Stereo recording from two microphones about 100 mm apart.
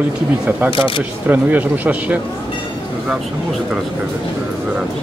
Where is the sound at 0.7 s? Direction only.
60° left (ahead or behind).